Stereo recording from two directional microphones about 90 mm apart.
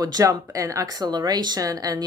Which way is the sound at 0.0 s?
40° right (ahead or behind).